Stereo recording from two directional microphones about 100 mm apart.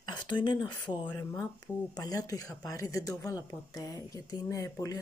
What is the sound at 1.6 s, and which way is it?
Speech, 40° left (ahead or behind).